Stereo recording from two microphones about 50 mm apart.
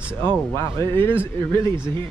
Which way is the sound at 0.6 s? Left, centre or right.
Left.